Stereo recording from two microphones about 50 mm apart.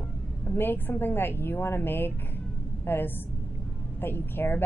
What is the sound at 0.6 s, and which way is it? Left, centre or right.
A woman's voice, left.